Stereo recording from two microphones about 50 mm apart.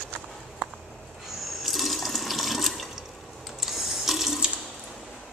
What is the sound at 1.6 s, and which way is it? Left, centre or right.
Water, centre.